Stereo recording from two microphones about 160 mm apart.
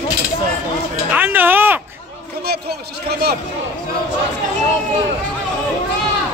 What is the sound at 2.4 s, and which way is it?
Speech, 85° right.